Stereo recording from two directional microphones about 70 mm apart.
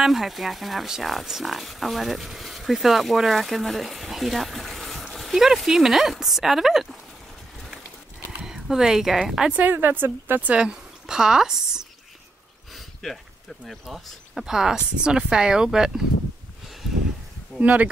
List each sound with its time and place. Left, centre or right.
0.0 s speech: centre
8.4 s speech: centre
9.5 s speech: right
10.5 s speech: centre
12.7 s a sound: centre
13.7 s speech: centre
17.5 s speech: centre